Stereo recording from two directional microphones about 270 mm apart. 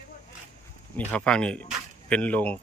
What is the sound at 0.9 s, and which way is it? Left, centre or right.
Speech, centre.